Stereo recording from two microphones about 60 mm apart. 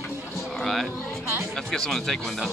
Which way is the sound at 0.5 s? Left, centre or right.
Centre.